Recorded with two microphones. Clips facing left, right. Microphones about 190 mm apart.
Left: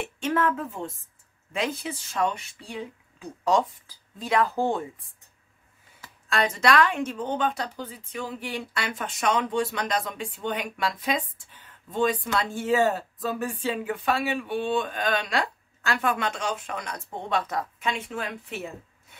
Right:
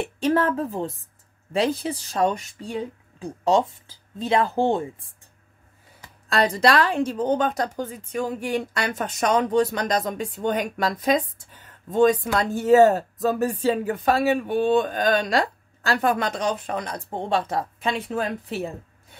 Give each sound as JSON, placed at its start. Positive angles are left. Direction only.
{"t": 0.0, "sound": "a woman's voice", "side_deg": -35}
{"t": 3.4, "sound": "speech", "side_deg": -25}
{"t": 6.2, "sound": "a woman's voice", "side_deg": -35}